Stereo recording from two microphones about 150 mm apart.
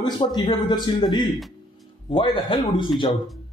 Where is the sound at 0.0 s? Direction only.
30° left (ahead or behind).